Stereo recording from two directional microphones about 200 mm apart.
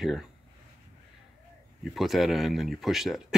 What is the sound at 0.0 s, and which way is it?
Speech, centre (ahead or behind).